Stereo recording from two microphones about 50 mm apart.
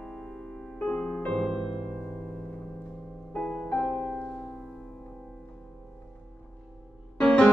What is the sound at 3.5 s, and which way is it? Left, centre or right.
Music, centre.